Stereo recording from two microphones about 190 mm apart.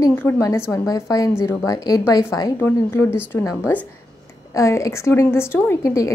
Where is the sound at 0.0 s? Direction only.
10° left (ahead or behind).